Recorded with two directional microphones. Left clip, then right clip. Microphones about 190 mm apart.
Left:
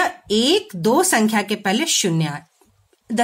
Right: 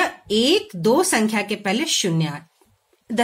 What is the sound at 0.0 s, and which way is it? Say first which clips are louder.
A woman's voice: left 1 dB; 30° left (ahead or behind).